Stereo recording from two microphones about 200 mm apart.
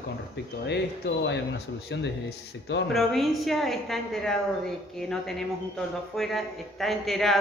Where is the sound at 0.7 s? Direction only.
60° left (ahead or behind).